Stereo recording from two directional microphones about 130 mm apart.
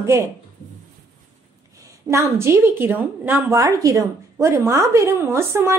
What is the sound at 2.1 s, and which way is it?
A woman's voice, 20° right (ahead or behind).